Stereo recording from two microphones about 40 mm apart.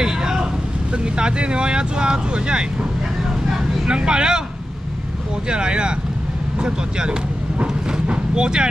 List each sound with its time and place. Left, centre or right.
0.0 s vehicle: centre
0.9 s speech: right
3.5 s vehicle: right
5.5 s speech: right